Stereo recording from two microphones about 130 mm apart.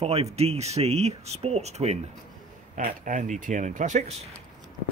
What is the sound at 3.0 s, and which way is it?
Speech, 75° right (ahead or behind).